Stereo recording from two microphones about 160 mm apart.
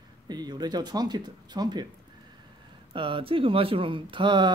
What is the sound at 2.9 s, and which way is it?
Speech, 30° right (ahead or behind).